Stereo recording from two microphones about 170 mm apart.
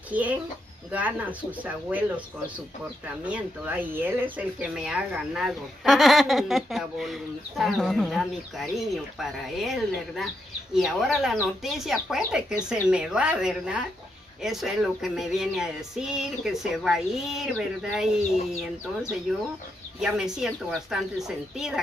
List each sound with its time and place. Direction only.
0.1 s speech: 10° right (ahead or behind)
3.3 s speech: 10° right (ahead or behind)
20.0 s speech: 5° right (ahead or behind)